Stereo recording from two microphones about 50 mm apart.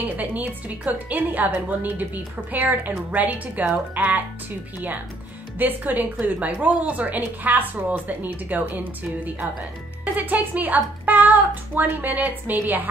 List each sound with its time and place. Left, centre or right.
0.2 s a woman's voice: right
5.6 s a woman's voice: right